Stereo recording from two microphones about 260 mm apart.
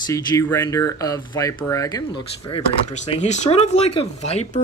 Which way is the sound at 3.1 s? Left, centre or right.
Left.